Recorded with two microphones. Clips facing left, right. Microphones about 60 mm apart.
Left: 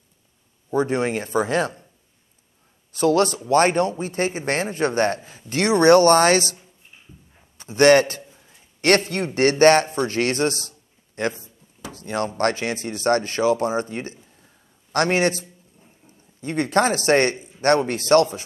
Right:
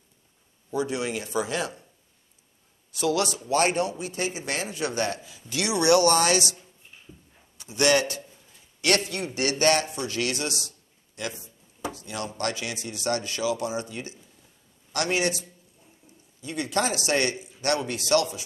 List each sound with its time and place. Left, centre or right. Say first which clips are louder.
0.7 s speech: left 7 dB; left
2.9 s a man's voice: left 7 dB; left